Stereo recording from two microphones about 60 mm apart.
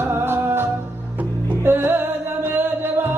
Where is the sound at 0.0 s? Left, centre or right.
Right.